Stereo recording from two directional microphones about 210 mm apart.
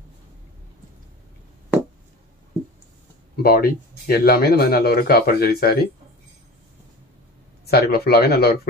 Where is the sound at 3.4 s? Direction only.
45° left (ahead or behind).